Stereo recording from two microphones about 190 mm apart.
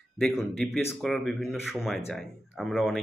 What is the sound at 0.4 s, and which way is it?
Speech, centre (ahead or behind).